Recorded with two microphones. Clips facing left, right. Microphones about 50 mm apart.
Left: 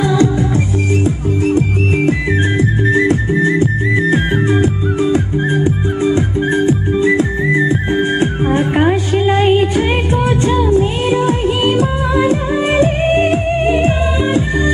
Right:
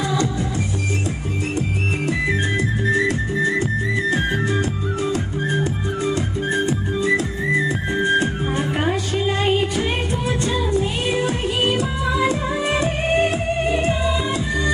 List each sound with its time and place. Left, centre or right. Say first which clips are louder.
0.0 s music: left 8 dB; left
2.0 s music: left 6 dB; left